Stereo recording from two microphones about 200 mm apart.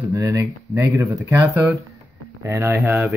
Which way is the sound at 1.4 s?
15° right (ahead or behind).